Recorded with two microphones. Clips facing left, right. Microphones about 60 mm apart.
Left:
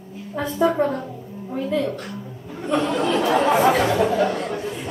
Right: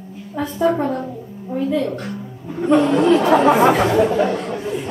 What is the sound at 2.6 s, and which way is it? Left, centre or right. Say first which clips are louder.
Speech: right 7 dB; right.